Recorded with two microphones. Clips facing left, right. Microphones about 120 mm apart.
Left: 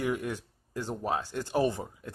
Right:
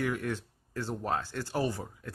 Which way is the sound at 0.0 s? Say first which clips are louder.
Left 1 dB; 15° left (ahead or behind).